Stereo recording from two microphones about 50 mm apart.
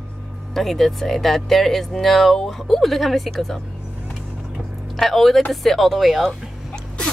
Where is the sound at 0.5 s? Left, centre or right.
Centre.